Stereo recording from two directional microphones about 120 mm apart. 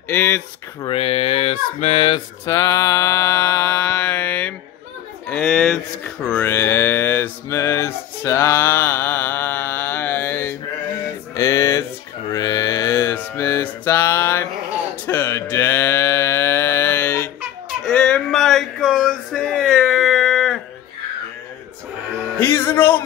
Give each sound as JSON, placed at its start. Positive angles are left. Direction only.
{"t": 0.1, "sound": "mantra", "side_deg": 20}
{"t": 0.8, "sound": "speech", "side_deg": 55}
{"t": 2.4, "sound": "mantra", "side_deg": 30}
{"t": 4.0, "sound": "mantra", "side_deg": 15}
{"t": 5.3, "sound": "speech", "side_deg": 5}
{"t": 5.7, "sound": "mantra", "side_deg": 10}
{"t": 11.3, "sound": "music", "side_deg": 30}
{"t": 12.3, "sound": "mantra", "side_deg": 30}
{"t": 17.8, "sound": "a sound", "side_deg": 5}
{"t": 22.4, "sound": "music", "side_deg": 20}